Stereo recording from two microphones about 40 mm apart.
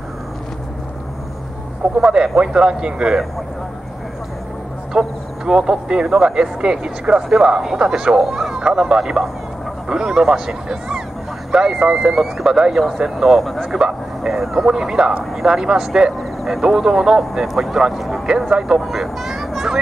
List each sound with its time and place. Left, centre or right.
2.0 s speech: centre
4.9 s speech: centre
13.4 s speech: centre